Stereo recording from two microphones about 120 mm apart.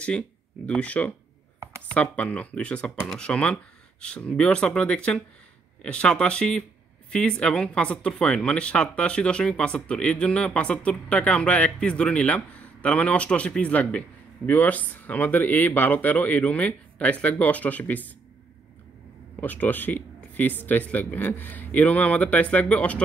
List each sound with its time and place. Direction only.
0.7 s speech: 10° left (ahead or behind)
19.4 s speech: 15° left (ahead or behind)